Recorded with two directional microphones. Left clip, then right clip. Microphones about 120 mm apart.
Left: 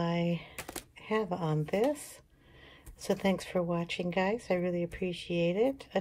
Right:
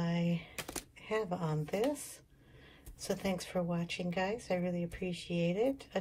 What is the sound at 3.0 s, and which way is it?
Speech, 30° left (ahead or behind).